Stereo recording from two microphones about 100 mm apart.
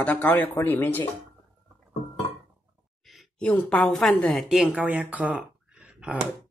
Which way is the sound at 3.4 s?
15° left (ahead or behind).